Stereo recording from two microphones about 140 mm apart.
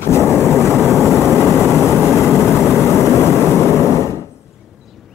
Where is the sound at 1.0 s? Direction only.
20° left (ahead or behind).